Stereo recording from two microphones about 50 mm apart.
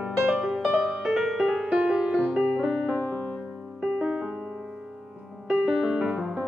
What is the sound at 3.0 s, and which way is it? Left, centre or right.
Music, left.